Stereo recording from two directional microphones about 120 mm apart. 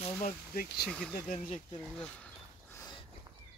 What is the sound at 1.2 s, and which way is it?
Speech, 90° left.